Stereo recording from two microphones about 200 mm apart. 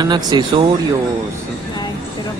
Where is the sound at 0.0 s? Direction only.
20° right (ahead or behind).